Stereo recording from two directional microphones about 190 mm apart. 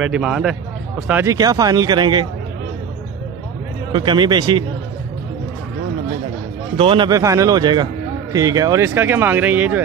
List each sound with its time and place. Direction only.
0.0 s speech: 5° right (ahead or behind); by 2.2 s 25° right (ahead or behind)
3.9 s speech: 25° right (ahead or behind)
6.8 s a man's voice: 25° right (ahead or behind); by 9.8 s 10° right (ahead or behind)